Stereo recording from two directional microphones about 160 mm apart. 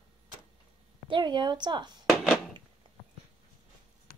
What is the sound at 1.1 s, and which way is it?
Speech, 30° right (ahead or behind).